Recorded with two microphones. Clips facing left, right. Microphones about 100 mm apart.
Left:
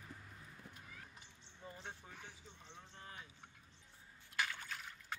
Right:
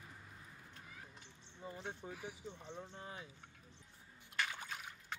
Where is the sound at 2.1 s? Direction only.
10° right (ahead or behind).